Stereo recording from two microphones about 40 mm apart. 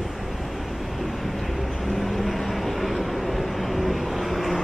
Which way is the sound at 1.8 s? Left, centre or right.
Centre.